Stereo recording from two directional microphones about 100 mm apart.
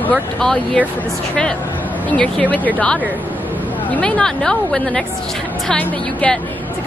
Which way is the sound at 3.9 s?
15° left (ahead or behind).